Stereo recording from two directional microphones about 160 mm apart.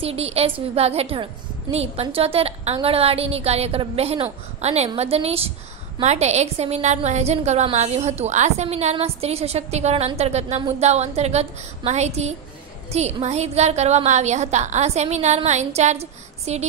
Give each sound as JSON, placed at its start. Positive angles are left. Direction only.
{"t": 0.0, "sound": "a woman's voice", "side_deg": -40}